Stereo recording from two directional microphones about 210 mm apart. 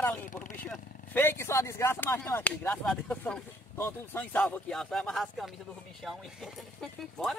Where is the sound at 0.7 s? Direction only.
10° left (ahead or behind).